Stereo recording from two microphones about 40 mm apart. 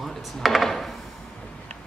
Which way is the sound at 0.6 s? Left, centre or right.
Centre.